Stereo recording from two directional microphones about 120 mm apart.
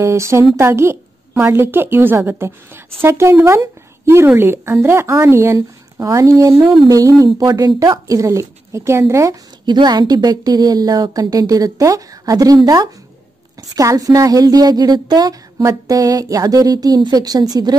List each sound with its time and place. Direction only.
0.0 s speech: 25° right (ahead or behind)
9.7 s a woman's voice: 35° right (ahead or behind)